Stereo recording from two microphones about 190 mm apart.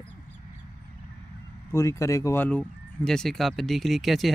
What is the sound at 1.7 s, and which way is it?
Speech, 15° left (ahead or behind).